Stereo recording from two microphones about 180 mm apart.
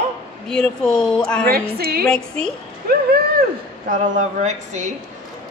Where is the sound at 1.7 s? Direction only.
60° right (ahead or behind).